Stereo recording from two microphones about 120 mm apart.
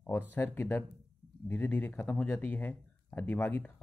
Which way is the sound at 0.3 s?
15° left (ahead or behind).